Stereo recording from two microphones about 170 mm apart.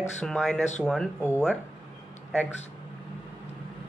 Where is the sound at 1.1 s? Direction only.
15° left (ahead or behind).